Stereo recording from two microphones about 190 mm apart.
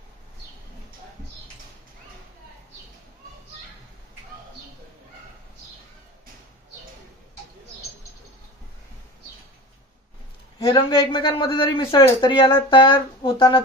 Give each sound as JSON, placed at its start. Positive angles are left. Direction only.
{"t": 10.6, "sound": "a man's voice", "side_deg": 25}